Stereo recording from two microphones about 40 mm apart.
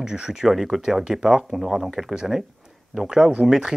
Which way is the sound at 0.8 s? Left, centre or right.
Centre.